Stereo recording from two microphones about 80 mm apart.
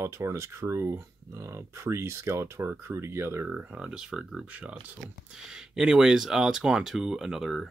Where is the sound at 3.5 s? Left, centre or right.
Centre.